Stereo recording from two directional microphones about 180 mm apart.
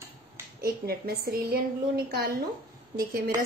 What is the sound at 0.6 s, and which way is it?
A woman's voice, 55° right (ahead or behind).